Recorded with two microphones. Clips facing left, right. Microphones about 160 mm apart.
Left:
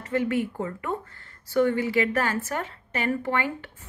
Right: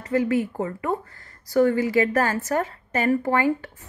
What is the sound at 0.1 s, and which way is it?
A woman's voice, 35° right (ahead or behind).